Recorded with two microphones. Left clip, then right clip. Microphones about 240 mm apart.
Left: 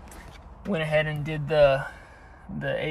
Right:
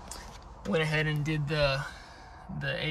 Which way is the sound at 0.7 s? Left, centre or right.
Centre.